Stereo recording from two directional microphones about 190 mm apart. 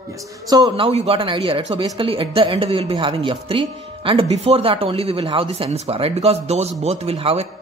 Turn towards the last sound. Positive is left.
turn(degrees=-30)  # may be behind; listen again after turning